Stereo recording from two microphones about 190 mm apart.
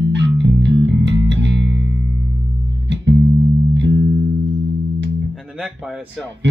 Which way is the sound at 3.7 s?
65° right (ahead or behind).